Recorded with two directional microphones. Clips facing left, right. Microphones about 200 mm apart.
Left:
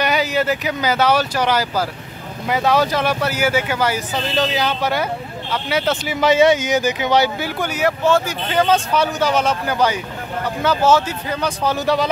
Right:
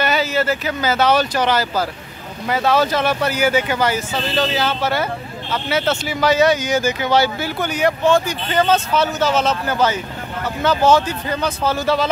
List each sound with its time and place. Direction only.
0.0 s speech: 15° left (ahead or behind)